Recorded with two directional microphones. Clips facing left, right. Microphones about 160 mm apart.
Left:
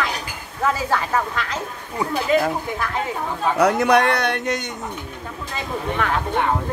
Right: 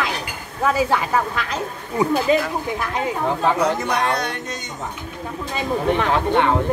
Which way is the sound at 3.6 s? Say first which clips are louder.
Left 4 dB; 70° left (ahead or behind).